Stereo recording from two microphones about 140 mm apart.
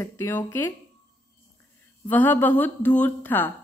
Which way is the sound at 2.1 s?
15° left (ahead or behind).